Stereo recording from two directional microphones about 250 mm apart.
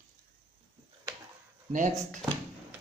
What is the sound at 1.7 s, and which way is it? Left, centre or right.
Speech, right.